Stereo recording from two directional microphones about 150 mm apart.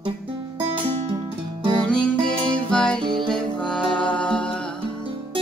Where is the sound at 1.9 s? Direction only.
5° left (ahead or behind).